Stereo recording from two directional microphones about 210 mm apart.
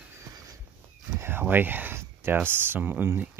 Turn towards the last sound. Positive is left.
turn(degrees=-10)  # may be behind; listen again after turning